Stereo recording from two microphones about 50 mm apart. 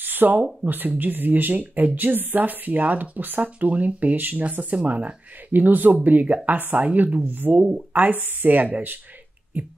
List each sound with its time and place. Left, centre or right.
0.0 s a sound: right
0.7 s speech: right
7.5 s speech: right
7.9 s speech: right